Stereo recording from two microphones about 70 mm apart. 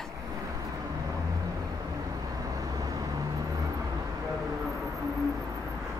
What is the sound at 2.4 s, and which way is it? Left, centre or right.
Vehicle, right.